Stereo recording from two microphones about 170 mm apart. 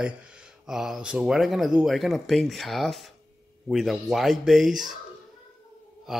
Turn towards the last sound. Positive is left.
turn(degrees=0)  # may be behind; listen again after turning